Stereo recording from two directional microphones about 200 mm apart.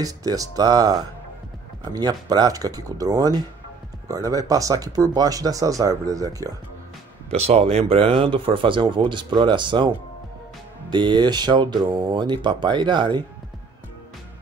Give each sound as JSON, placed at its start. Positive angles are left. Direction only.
{"t": 0.0, "sound": "speech", "side_deg": -20}
{"t": 7.2, "sound": "speech", "side_deg": -30}
{"t": 10.9, "sound": "speech", "side_deg": -25}